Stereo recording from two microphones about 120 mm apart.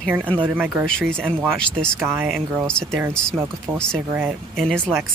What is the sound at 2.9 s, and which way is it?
Speech, 20° right (ahead or behind).